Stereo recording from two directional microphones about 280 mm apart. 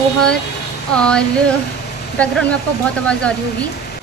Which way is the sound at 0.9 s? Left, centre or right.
Centre.